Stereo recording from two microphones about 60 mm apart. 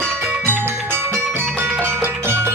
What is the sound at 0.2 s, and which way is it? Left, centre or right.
Music, right.